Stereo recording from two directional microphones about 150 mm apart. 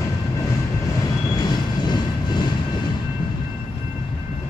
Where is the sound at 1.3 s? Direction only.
25° left (ahead or behind).